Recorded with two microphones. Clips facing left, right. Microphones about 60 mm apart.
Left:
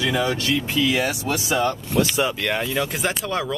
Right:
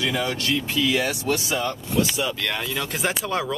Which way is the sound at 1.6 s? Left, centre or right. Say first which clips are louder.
Left 3 dB; left.